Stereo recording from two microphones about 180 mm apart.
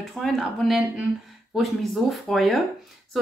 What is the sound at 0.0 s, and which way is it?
A woman's voice, centre (ahead or behind).